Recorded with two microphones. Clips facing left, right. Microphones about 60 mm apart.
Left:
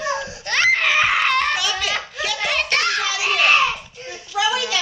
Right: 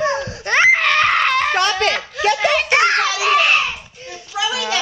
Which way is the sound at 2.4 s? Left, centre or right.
Centre.